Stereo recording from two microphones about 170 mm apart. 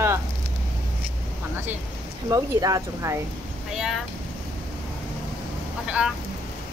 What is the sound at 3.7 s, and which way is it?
Vehicle, centre (ahead or behind).